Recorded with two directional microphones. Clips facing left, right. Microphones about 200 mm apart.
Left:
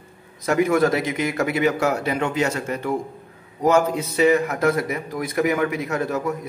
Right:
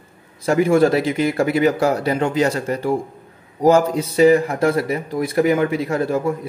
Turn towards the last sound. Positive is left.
turn(degrees=-30)  # may be behind; listen again after turning